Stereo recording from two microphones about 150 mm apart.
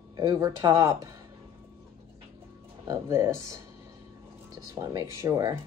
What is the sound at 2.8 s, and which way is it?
A woman's voice, 20° right (ahead or behind).